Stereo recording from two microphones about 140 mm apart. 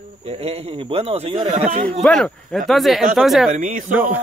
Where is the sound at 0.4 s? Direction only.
45° right (ahead or behind).